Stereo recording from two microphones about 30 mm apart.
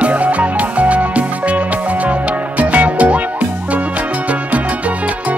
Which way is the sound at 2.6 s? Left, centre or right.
Right.